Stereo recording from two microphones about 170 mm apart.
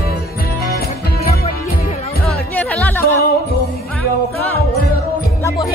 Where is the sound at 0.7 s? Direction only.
65° left (ahead or behind).